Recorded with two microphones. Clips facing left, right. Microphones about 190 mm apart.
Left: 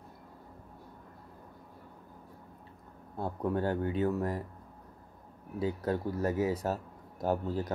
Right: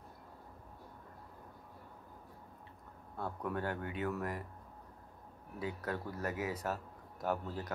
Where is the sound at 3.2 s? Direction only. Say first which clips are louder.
Left 7 dB; 30° left (ahead or behind).